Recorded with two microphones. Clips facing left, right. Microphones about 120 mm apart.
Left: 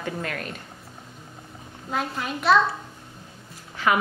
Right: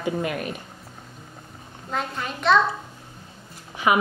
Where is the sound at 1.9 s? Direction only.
5° left (ahead or behind).